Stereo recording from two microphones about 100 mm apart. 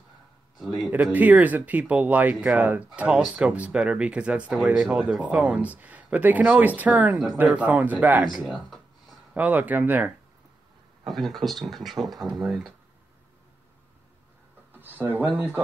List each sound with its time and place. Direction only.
0.7 s speech: 15° right (ahead or behind)
5.0 s speech: 15° right (ahead or behind)
8.3 s speech: 5° right (ahead or behind)
9.3 s speech: 15° right (ahead or behind)
11.1 s speech: centre (ahead or behind)
14.7 s speech: 20° right (ahead or behind)